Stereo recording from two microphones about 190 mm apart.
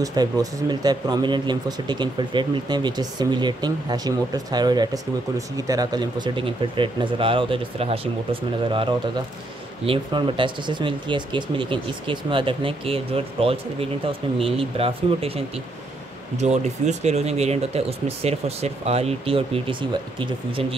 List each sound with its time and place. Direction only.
0.0 s speech: 20° right (ahead or behind)